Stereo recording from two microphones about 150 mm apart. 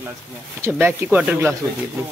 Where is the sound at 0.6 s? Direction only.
15° right (ahead or behind).